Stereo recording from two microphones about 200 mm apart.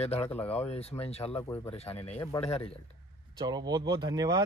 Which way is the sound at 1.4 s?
10° left (ahead or behind).